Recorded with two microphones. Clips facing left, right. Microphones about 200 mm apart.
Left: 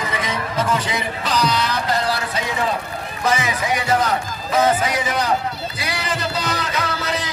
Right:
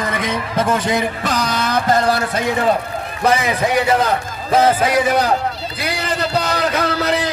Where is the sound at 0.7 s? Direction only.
50° right (ahead or behind).